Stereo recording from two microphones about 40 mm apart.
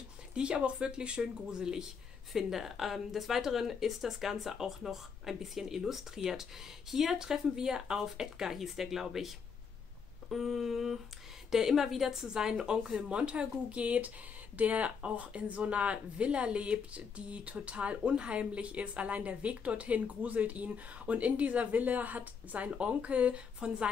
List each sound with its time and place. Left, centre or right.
0.3 s speech: right
2.3 s speech: centre
10.3 s speech: centre; by 23.9 s right